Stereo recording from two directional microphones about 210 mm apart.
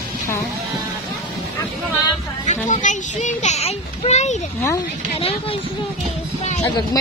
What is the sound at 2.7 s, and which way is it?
A child's voice, 35° left (ahead or behind).